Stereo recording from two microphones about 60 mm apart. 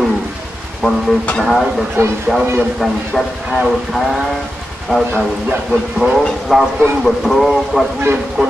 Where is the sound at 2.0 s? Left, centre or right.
Right.